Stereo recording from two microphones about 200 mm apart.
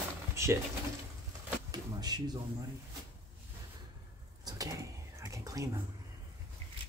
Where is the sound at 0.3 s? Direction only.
15° right (ahead or behind).